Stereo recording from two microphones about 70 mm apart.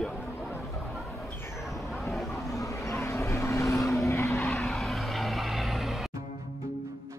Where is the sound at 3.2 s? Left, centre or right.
Left.